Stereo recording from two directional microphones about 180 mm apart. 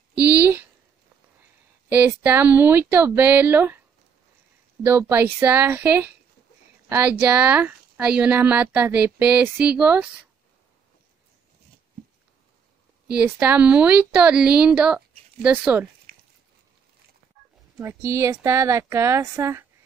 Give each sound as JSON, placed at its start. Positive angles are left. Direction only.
{"t": 0.4, "sound": "a sound", "side_deg": -10}
{"t": 1.9, "sound": "speech", "side_deg": -10}
{"t": 4.8, "sound": "speech", "side_deg": -15}
{"t": 13.4, "sound": "speech", "side_deg": -10}
{"t": 17.7, "sound": "speech", "side_deg": -15}